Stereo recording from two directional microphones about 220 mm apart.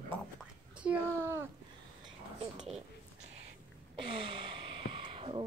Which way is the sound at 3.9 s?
25° right (ahead or behind).